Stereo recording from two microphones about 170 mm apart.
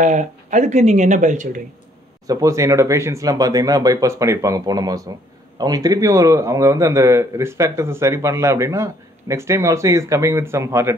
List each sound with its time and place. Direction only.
0.0 s speech: 45° right (ahead or behind)
2.2 s a man's voice: 20° right (ahead or behind)